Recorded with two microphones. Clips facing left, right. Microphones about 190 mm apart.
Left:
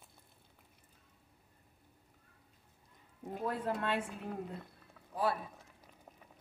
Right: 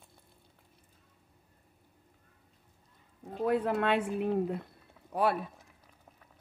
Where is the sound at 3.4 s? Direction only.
70° right (ahead or behind).